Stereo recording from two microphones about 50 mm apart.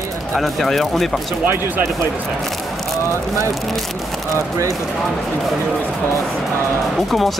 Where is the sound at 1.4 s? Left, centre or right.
Right.